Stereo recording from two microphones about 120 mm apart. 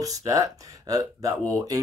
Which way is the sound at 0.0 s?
30° right (ahead or behind).